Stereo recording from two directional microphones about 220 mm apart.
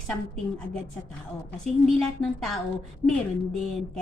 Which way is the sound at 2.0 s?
Centre (ahead or behind).